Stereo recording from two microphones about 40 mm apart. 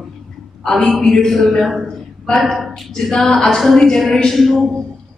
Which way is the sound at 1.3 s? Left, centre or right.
Centre.